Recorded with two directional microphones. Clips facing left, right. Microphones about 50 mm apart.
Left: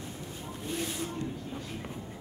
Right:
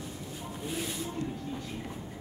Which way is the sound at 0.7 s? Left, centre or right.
Centre.